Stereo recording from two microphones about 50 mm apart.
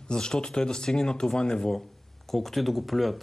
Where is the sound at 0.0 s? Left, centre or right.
Centre.